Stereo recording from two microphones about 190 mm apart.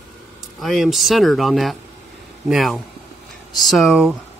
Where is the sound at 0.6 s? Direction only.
Centre (ahead or behind).